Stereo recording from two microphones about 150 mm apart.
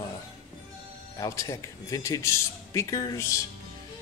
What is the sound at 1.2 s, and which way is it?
A man's voice, 20° left (ahead or behind).